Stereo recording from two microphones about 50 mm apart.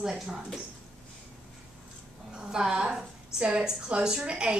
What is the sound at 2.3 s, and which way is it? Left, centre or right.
Speech, centre.